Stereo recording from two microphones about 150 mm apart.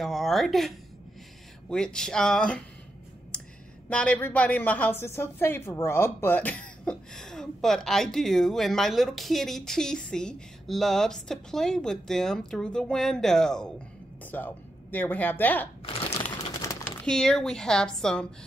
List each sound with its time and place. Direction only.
0.0 s speech: centre (ahead or behind)
3.9 s speech: 10° left (ahead or behind)
15.8 s a sound: 40° left (ahead or behind)
16.6 s speech: 10° left (ahead or behind)